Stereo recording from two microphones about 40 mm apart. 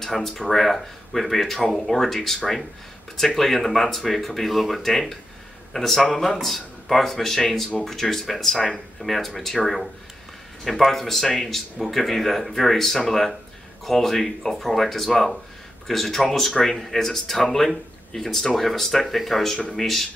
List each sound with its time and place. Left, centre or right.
0.0 s speech: centre
10.9 s speech: centre